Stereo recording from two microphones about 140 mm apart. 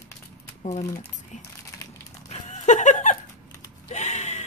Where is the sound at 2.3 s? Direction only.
55° left (ahead or behind).